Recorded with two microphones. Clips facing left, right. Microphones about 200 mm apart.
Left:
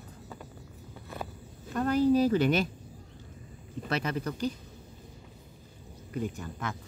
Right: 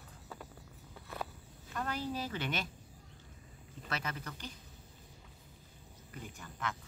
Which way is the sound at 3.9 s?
35° left (ahead or behind).